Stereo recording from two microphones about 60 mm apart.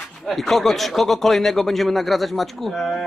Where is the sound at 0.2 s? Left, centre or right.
Centre.